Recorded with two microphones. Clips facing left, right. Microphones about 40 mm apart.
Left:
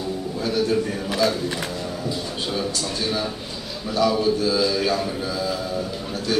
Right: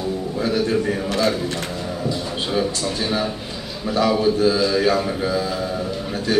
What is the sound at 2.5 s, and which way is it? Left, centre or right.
A man's voice, centre.